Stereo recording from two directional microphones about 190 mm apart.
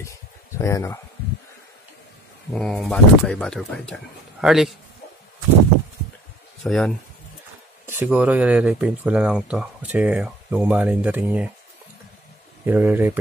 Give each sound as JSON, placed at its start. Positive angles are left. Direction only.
{"t": 0.6, "sound": "speech", "side_deg": 15}
{"t": 2.5, "sound": "speech", "side_deg": 0}
{"t": 6.6, "sound": "speech", "side_deg": 0}
{"t": 7.8, "sound": "speech", "side_deg": -10}
{"t": 12.6, "sound": "speech", "side_deg": -10}